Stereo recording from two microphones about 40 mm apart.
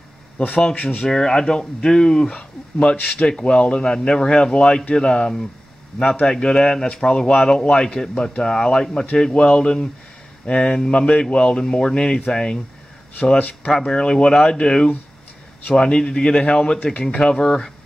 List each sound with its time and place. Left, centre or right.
0.4 s speech: left
0.7 s speech: left
1.0 s speech: centre
13.7 s speech: centre